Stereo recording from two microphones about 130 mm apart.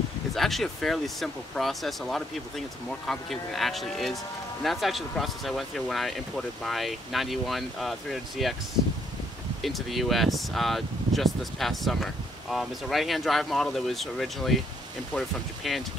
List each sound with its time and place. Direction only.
0.3 s speech: centre (ahead or behind)
9.6 s speech: centre (ahead or behind)